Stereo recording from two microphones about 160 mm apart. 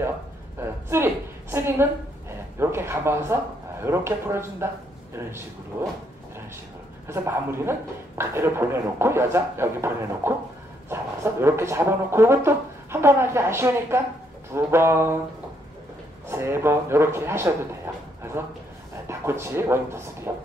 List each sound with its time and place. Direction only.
0.6 s a sound: 15° right (ahead or behind)
3.8 s speech: 15° right (ahead or behind)
7.1 s speech: 15° right (ahead or behind)
11.4 s speech: 15° right (ahead or behind)
16.3 s speech: 15° right (ahead or behind)
19.0 s speech: 15° right (ahead or behind)